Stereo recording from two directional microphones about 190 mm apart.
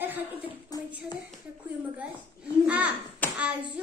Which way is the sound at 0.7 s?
20° left (ahead or behind).